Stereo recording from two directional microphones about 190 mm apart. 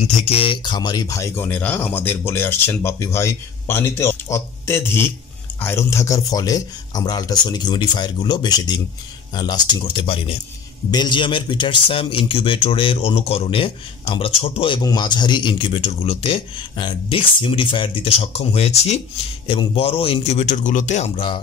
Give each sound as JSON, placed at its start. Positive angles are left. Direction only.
{"t": 0.0, "sound": "a man's voice", "side_deg": 35}